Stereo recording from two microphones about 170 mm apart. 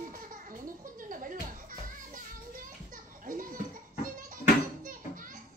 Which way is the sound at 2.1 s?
55° right (ahead or behind).